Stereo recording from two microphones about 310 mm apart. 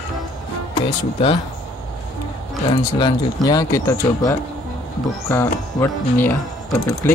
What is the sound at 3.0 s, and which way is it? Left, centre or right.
Speech, centre.